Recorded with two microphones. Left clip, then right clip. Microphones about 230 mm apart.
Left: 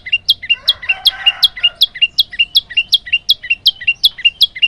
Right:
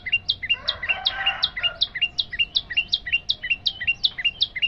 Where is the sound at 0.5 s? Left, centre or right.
Left.